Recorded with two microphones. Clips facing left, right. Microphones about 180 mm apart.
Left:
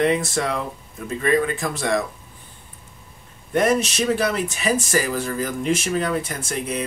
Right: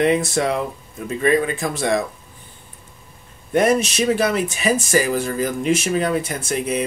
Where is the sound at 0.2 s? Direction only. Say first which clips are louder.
Right 3 dB; 25° right (ahead or behind).